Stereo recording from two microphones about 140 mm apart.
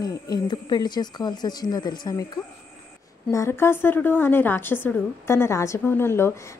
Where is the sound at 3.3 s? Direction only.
20° left (ahead or behind).